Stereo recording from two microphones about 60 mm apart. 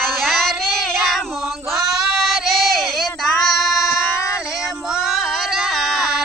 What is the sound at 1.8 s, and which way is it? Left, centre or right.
Child singing, centre.